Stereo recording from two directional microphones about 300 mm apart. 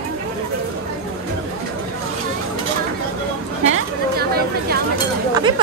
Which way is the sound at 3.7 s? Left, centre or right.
Right.